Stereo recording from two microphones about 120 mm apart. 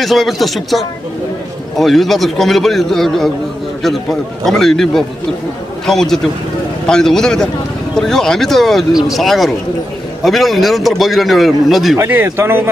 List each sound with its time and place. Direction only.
0.0 s a man's voice: centre (ahead or behind)
12.0 s speech: 20° right (ahead or behind)